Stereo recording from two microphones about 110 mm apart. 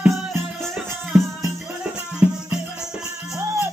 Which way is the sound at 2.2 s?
15° right (ahead or behind).